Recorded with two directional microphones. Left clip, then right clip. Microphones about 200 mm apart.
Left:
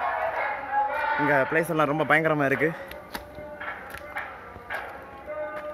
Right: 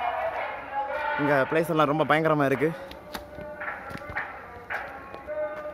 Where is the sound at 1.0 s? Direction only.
30° left (ahead or behind).